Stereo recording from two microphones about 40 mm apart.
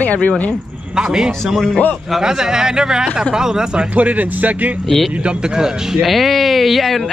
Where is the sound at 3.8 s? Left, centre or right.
Right.